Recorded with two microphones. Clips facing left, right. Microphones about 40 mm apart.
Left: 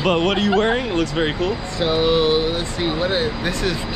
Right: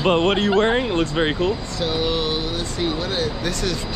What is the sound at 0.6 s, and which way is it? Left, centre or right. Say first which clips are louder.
Speech: even; right.